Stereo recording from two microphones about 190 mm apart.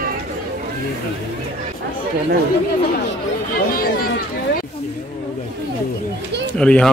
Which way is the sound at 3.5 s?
50° left (ahead or behind).